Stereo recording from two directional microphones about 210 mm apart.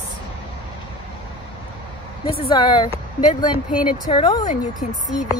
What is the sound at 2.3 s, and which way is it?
Speech, 25° left (ahead or behind).